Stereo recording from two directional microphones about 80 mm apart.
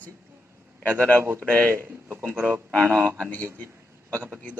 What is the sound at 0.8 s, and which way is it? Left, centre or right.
Speech, centre.